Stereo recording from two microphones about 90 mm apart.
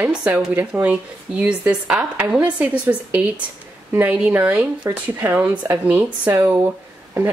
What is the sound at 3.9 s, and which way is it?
Speech, 20° right (ahead or behind).